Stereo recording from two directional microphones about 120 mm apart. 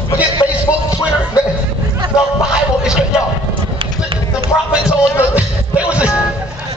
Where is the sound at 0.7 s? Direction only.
25° left (ahead or behind).